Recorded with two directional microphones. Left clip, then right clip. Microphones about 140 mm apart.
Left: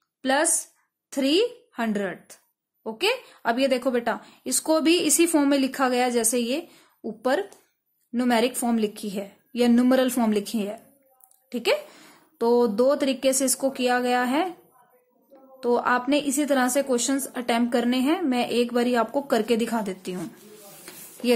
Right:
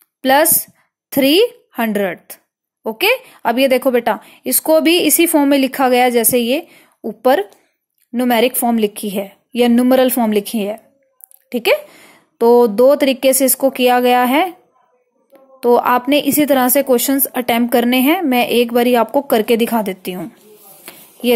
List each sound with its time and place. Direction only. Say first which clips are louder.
0.2 s a woman's voice: right 11 dB; 40° right (ahead or behind)
15.6 s a woman's voice: right 10 dB; 40° right (ahead or behind)
20.8 s a sound: right 9 dB; 30° right (ahead or behind)